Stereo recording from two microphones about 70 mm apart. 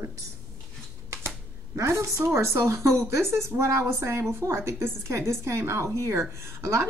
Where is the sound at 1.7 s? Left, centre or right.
Right.